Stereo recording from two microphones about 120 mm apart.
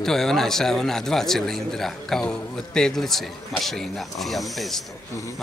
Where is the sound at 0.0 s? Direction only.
5° left (ahead or behind).